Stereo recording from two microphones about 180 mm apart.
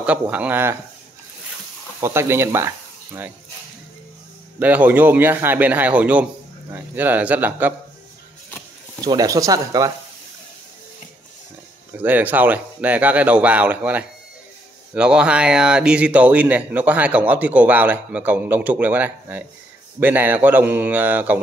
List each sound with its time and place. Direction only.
0.0 s speech: 5° right (ahead or behind)
2.0 s speech: 15° right (ahead or behind)
4.6 s speech: 10° right (ahead or behind)
9.0 s speech: 20° right (ahead or behind)
12.0 s speech: 10° right (ahead or behind)